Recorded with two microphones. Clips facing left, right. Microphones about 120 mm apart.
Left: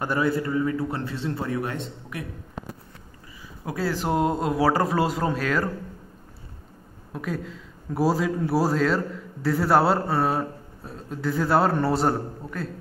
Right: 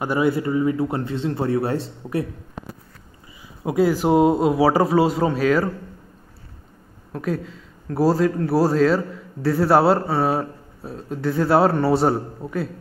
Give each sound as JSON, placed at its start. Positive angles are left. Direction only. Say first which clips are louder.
{"t": 0.0, "sound": "a man's voice", "louder": "right 4 dB", "side_deg": -15}
{"t": 3.6, "sound": "a man's voice", "louder": "right 9 dB", "side_deg": -20}
{"t": 3.9, "sound": "speech", "louder": "right 5 dB", "side_deg": -5}
{"t": 7.1, "sound": "speech", "louder": "right 5 dB", "side_deg": 0}